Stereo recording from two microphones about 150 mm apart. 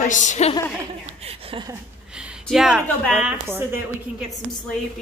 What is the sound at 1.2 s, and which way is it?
Speech, 40° right (ahead or behind).